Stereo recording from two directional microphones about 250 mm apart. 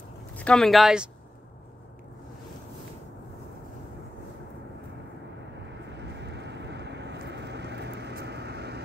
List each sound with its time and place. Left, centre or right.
0.4 s speech: centre
5.9 s vehicle: right